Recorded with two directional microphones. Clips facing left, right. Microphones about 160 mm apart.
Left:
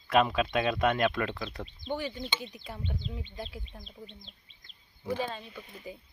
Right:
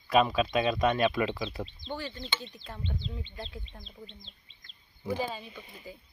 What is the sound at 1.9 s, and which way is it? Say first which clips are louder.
Speech: left 6 dB; 15° left (ahead or behind).